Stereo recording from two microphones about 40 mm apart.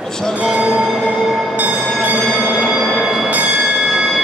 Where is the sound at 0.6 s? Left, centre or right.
Right.